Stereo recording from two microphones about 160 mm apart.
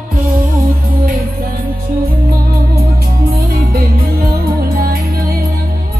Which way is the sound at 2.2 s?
70° right (ahead or behind).